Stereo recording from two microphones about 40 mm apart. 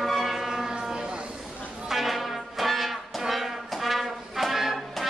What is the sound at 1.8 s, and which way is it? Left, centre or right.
Brass instrument, centre.